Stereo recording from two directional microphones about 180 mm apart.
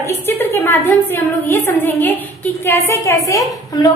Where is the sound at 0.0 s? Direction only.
15° left (ahead or behind).